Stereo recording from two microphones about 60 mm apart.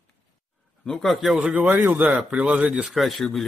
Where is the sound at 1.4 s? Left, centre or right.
Right.